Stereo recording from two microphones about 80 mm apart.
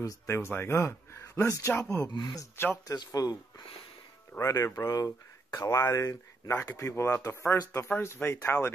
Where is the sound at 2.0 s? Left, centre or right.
Left.